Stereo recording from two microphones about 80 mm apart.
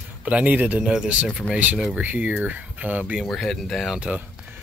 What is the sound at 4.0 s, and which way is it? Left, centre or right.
Speech, centre.